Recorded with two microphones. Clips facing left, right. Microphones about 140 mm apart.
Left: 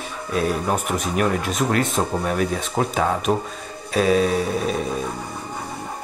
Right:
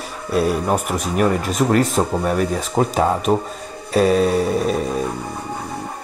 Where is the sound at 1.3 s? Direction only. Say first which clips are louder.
Right 4 dB; 45° right (ahead or behind).